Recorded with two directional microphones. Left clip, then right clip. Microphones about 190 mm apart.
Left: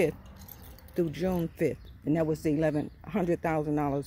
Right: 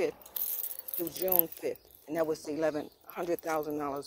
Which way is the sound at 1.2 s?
30° left (ahead or behind).